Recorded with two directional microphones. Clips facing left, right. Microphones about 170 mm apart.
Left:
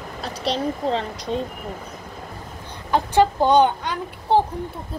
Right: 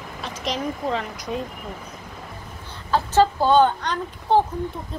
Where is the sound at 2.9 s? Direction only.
15° left (ahead or behind).